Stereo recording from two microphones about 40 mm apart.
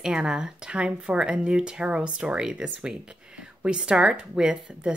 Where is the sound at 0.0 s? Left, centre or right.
Centre.